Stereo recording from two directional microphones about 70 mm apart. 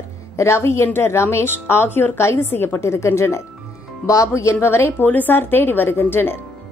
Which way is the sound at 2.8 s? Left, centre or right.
Left.